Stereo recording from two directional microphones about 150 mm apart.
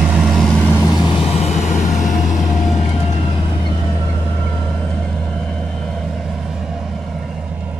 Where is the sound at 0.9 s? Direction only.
30° left (ahead or behind); by 2.0 s 50° left (ahead or behind).